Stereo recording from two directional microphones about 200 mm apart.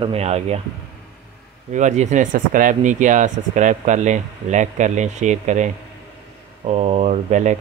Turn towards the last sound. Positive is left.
turn(degrees=-35)  # may be behind; listen again after turning